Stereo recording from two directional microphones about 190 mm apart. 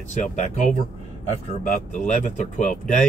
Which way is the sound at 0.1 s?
40° left (ahead or behind).